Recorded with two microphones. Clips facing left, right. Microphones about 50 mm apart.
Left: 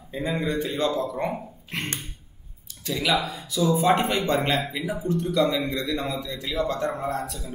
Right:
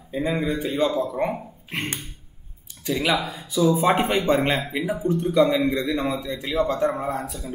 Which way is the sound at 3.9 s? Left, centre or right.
Right.